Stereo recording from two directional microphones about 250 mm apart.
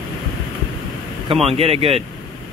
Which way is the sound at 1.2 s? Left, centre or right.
Right.